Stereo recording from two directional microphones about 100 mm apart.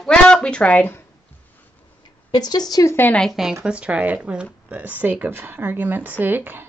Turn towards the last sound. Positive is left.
turn(degrees=-20)  # may be behind; listen again after turning